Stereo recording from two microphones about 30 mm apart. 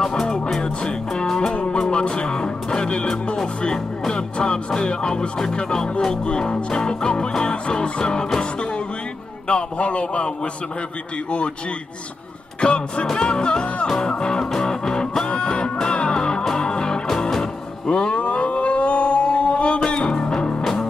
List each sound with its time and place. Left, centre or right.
0.0 s music: centre
0.6 s music: left
1.2 s music: centre
1.5 s music: left
4.1 s music: left
9.5 s a man's voice: left
12.5 s a man's voice: left
13.2 s music: left
15.2 s music: left
18.1 s a sound: left